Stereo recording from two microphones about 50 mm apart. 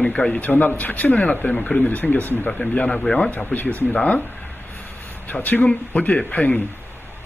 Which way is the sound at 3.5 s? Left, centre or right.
Left.